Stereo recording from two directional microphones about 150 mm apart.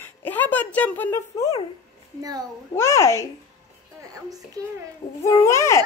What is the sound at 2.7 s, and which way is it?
Speech, 20° left (ahead or behind).